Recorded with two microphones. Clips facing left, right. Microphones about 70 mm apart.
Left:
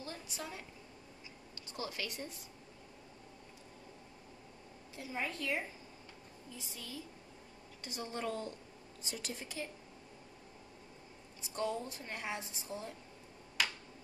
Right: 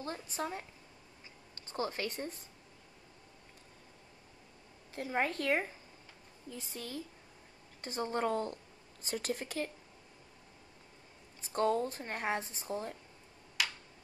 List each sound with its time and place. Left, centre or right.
0.0 s a woman's voice: right
1.7 s a woman's voice: right
4.9 s a woman's voice: right
11.4 s a woman's voice: right